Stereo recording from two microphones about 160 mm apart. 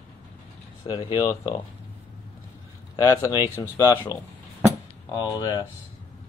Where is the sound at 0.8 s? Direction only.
20° left (ahead or behind).